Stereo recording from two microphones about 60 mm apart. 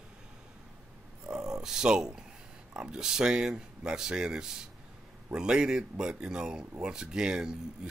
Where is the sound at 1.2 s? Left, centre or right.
Centre.